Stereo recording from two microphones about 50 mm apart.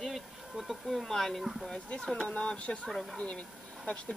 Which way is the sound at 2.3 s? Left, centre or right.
Left.